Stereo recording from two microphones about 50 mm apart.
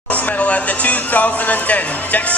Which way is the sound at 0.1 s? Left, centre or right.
Left.